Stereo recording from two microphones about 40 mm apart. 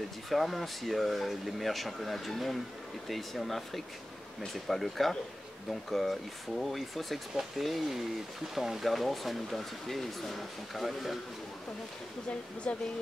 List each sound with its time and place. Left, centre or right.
0.3 s speech: centre
12.7 s speech: left